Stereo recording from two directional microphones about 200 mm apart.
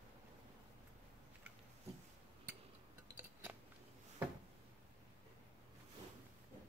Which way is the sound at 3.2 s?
10° right (ahead or behind).